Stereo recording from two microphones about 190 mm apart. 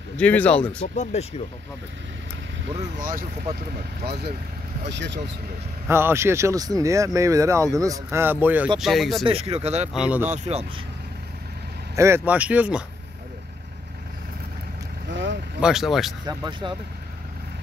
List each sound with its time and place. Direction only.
0.2 s speech: 5° left (ahead or behind)
1.1 s speech: 35° left (ahead or behind)
3.0 s speech: 45° right (ahead or behind)
4.0 s speech: 55° right (ahead or behind)
5.9 s speech: 15° right (ahead or behind)
9.2 s speech: 30° right (ahead or behind)
9.9 s speech: 5° right (ahead or behind)
10.3 s speech: 35° right (ahead or behind)
11.9 s speech: 15° right (ahead or behind)
15.0 s boat: 70° right (ahead or behind)
15.6 s speech: centre (ahead or behind)
16.3 s speech: 25° right (ahead or behind)